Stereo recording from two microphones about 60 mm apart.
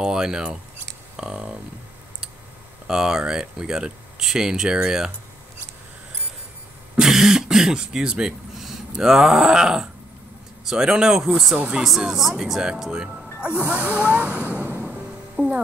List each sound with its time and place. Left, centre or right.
0.0 s speech: centre
2.9 s speech: centre
7.0 s speech: centre
11.5 s speech: centre
11.8 s speech: centre; by 14.9 s right
14.9 s music: centre